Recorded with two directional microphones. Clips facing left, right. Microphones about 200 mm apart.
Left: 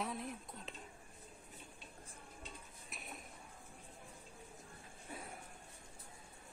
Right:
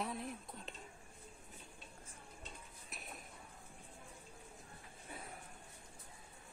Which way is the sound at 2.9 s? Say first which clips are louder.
Left 1 dB; centre (ahead or behind).